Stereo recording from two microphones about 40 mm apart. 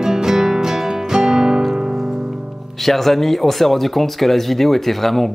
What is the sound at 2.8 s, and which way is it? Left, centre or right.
Speech, centre.